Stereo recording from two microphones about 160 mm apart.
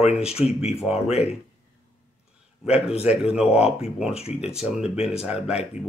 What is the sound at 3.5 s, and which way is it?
Speech, 40° left (ahead or behind).